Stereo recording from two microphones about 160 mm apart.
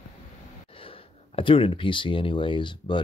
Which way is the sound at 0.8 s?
35° left (ahead or behind).